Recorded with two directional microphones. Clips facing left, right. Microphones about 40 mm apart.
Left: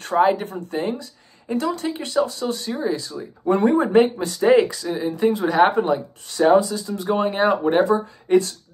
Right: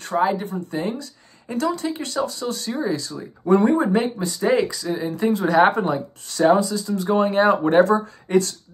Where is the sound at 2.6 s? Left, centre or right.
Centre.